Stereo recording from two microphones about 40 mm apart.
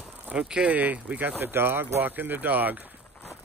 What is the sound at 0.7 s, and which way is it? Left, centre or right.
Speech, right.